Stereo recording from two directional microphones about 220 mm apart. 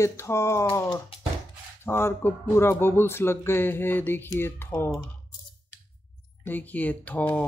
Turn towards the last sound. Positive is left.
turn(degrees=5)  # may be behind; listen again after turning